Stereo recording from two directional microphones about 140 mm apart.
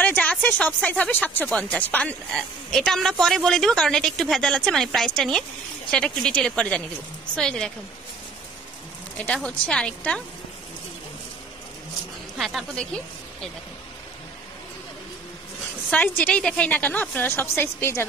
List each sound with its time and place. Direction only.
0.0 s a woman's voice: 10° left (ahead or behind)
9.2 s a woman's voice: 10° left (ahead or behind)
12.4 s speech: centre (ahead or behind)
15.9 s a woman's voice: 10° left (ahead or behind)